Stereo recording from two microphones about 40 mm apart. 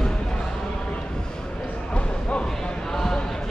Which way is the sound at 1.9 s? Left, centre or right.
Left.